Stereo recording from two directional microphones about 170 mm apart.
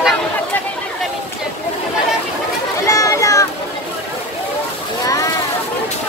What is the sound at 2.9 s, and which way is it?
Children playing, 20° left (ahead or behind).